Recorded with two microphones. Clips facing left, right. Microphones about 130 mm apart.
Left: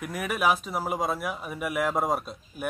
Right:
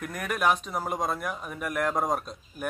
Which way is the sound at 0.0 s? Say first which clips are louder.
Left 1 dB; 5° left (ahead or behind).